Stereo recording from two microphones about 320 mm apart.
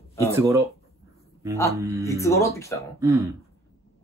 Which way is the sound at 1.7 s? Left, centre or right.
Centre.